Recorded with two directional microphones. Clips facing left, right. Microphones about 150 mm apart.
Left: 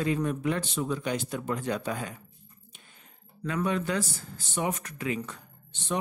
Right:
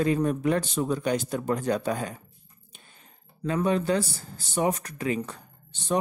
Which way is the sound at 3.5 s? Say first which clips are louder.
Right 4 dB; 30° right (ahead or behind).